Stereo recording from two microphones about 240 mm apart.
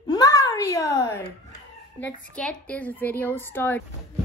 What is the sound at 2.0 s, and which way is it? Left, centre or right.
A woman's voice, centre.